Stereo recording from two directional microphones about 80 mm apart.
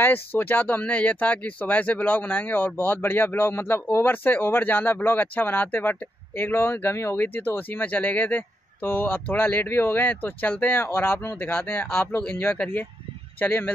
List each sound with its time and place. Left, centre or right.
0.0 s speech: left